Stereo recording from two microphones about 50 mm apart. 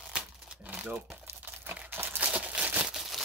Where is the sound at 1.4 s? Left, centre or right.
Right.